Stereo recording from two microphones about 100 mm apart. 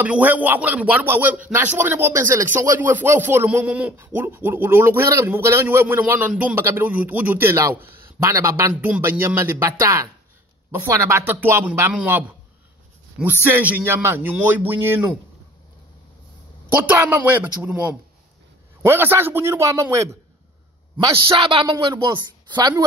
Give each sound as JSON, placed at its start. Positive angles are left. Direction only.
{"t": 0.0, "sound": "speech", "side_deg": -15}
{"t": 3.6, "sound": "speech", "side_deg": -10}
{"t": 3.9, "sound": "speech", "side_deg": -25}
{"t": 8.8, "sound": "speech", "side_deg": -15}
{"t": 13.2, "sound": "speech", "side_deg": -20}
{"t": 16.6, "sound": "speech", "side_deg": -20}
{"t": 21.1, "sound": "a woman's voice", "side_deg": -60}